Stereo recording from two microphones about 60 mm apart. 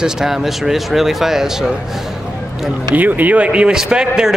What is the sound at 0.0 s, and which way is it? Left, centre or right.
Speech, centre.